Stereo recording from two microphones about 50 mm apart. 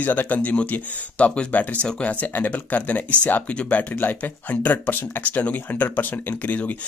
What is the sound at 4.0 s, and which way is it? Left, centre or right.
Speech, left.